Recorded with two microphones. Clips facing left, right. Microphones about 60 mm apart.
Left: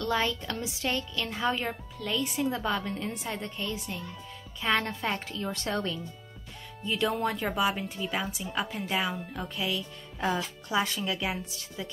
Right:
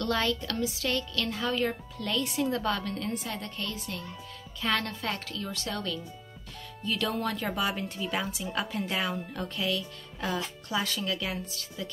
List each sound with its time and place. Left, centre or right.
0.2 s a woman's voice: left
1.7 s a woman's voice: centre
2.7 s a woman's voice: centre
7.0 s a woman's voice: centre
10.2 s a woman's voice: left